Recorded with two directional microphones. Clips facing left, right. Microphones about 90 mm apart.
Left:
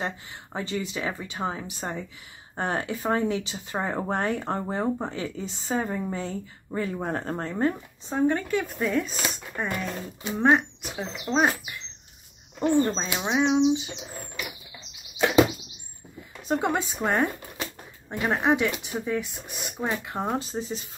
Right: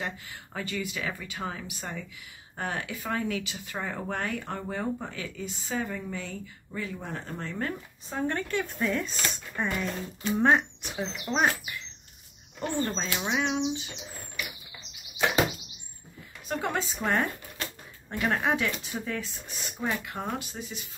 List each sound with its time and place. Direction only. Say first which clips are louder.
0.0 s a woman's voice: left 4 dB; 25° left (ahead or behind); by 7.5 s 45° left (ahead or behind)
7.5 s a woman's voice: left 9 dB; 25° left (ahead or behind)
8.3 s speech: left 5 dB; 10° left (ahead or behind)
11.3 s a woman's voice: left 3 dB; 15° left (ahead or behind)
16.4 s a woman's voice: left 5 dB; 20° left (ahead or behind)